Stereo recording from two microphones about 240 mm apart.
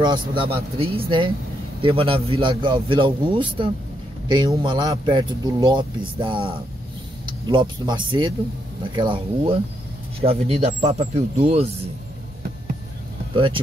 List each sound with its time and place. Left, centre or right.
0.0 s a man's voice: centre
13.3 s speech: right